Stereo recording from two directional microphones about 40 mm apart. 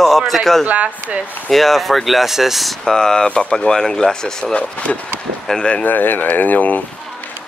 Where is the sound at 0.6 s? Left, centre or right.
Right.